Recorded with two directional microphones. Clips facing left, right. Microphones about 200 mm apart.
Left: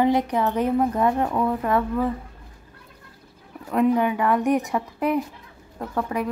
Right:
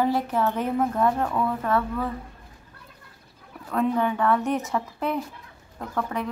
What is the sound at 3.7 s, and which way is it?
Speech, 10° left (ahead or behind).